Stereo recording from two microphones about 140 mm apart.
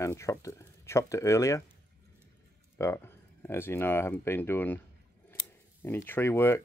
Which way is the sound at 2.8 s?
15° left (ahead or behind).